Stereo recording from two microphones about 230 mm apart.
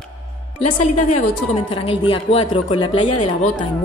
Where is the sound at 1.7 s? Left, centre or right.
Left.